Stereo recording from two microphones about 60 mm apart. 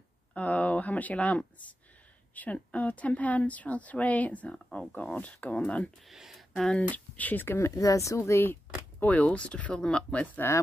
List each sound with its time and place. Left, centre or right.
0.3 s speech: left
6.0 s speech: centre
6.7 s speech: left
7.4 s speech: left
7.7 s speech: left
9.0 s speech: left
10.4 s speech: left